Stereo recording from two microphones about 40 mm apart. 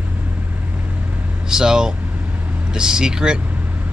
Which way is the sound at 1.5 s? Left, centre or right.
Centre.